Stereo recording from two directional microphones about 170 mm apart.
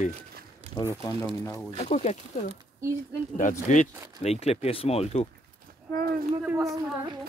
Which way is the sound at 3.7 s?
40° left (ahead or behind).